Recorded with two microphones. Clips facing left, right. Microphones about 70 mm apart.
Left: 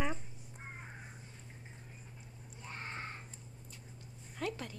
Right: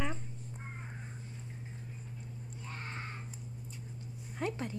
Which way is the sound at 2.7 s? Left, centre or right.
Centre.